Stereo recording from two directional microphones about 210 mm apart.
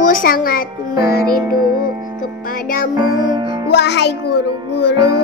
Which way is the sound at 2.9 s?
20° right (ahead or behind).